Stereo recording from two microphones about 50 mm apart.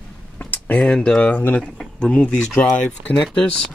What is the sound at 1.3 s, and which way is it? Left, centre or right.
Speech, left.